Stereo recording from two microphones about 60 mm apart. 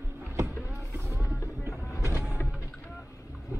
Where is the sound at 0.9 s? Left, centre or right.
Right.